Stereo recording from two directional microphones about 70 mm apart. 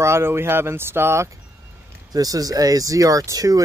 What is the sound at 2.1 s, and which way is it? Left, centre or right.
Speech, right.